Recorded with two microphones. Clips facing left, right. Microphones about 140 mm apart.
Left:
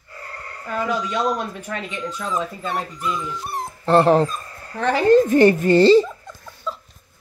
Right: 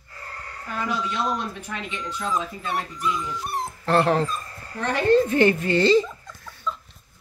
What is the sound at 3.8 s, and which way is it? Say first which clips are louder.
A child's voice: left 6 dB; 35° left (ahead or behind).